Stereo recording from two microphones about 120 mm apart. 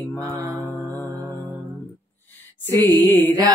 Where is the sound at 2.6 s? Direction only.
15° left (ahead or behind).